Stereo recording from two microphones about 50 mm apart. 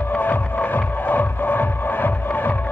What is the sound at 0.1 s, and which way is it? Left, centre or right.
Music, left.